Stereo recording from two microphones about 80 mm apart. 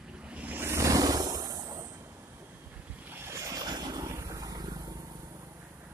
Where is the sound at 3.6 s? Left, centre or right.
Right.